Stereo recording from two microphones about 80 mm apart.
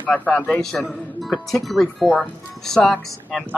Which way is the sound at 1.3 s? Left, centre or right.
Centre.